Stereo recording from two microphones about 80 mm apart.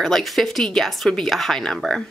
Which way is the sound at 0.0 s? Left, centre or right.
Centre.